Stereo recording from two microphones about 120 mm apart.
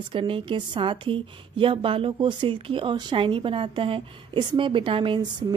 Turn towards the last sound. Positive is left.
turn(degrees=-40)  # may be behind; listen again after turning